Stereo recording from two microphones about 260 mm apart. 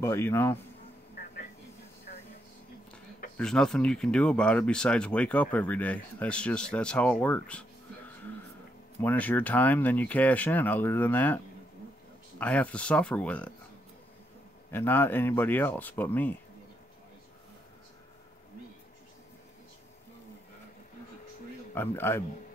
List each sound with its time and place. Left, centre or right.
0.0 s speech: centre
2.1 s a sound: left
3.3 s speech: centre
9.0 s speech: centre
14.7 s speech: centre
21.7 s speech: centre